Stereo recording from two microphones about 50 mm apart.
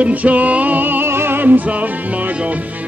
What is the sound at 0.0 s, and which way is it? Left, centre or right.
Music, right.